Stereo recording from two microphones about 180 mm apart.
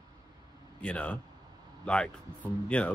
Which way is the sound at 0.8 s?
5° left (ahead or behind).